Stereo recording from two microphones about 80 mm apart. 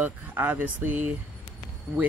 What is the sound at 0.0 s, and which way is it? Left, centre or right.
Speech, right.